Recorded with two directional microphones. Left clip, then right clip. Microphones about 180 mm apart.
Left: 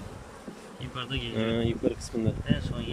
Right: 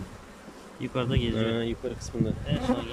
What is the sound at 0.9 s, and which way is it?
Speech, 40° right (ahead or behind).